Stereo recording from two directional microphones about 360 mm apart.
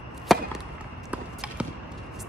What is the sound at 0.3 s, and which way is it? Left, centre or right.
Chop, centre.